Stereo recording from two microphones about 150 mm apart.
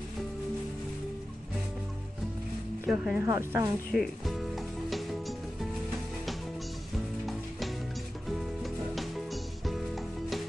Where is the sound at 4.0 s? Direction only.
Centre (ahead or behind).